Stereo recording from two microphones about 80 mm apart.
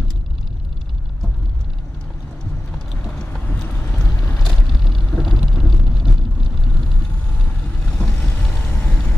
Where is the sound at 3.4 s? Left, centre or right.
Left.